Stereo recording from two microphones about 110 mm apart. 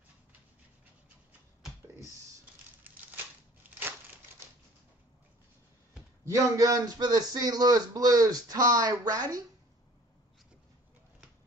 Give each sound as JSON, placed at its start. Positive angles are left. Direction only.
{"t": 2.8, "sound": "crushing", "side_deg": -15}
{"t": 6.2, "sound": "a man's voice", "side_deg": -30}